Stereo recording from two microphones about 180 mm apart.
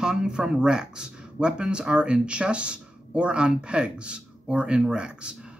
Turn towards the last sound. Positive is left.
turn(degrees=-5)  # may be behind; listen again after turning